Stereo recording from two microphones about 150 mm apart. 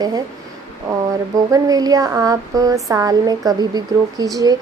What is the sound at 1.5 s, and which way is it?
Speech, 25° right (ahead or behind).